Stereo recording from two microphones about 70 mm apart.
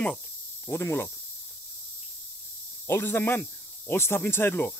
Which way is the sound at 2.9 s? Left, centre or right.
Left.